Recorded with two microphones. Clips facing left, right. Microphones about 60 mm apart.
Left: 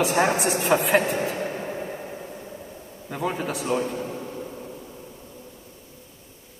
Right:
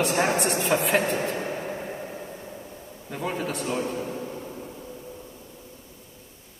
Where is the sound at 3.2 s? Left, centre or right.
Centre.